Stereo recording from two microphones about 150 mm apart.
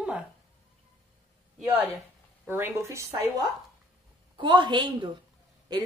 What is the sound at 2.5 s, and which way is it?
Speech, 15° right (ahead or behind).